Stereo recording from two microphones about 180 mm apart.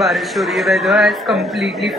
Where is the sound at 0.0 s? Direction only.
Centre (ahead or behind).